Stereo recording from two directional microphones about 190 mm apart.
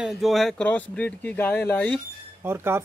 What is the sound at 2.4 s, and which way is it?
Speech, 10° right (ahead or behind).